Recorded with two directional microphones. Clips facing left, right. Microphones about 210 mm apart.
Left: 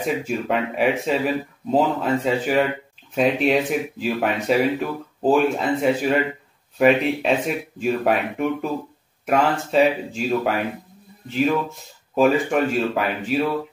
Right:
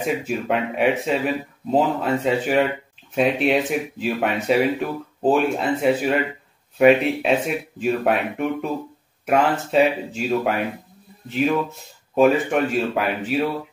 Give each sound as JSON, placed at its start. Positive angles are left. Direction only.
{"t": 0.0, "sound": "speech", "side_deg": 0}